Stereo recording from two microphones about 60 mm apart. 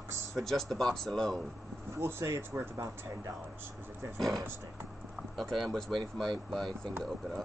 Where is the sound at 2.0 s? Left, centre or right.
Right.